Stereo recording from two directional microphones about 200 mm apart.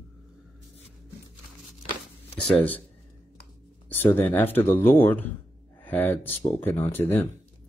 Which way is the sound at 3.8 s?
10° left (ahead or behind).